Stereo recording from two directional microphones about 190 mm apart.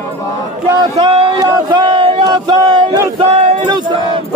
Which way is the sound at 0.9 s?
30° right (ahead or behind).